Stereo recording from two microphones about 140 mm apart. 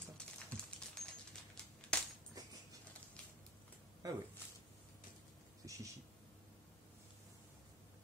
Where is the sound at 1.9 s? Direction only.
5° left (ahead or behind).